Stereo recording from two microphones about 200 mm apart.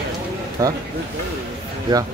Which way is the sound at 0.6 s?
15° right (ahead or behind).